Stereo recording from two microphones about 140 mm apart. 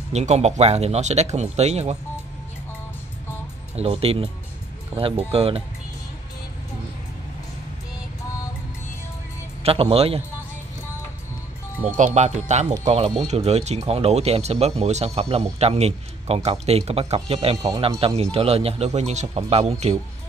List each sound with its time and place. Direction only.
0.1 s speech: 55° right (ahead or behind)
3.7 s speech: 45° right (ahead or behind)
9.6 s speech: 45° right (ahead or behind)
12.0 s speech: 55° right (ahead or behind)